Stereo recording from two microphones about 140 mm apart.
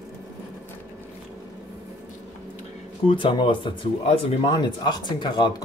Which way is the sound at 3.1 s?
35° left (ahead or behind).